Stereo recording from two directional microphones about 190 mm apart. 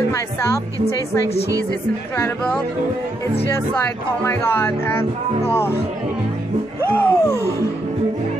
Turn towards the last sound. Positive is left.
turn(degrees=10)  # may be behind; listen again after turning